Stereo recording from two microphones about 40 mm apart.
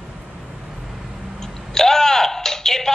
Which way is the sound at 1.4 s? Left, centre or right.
Centre.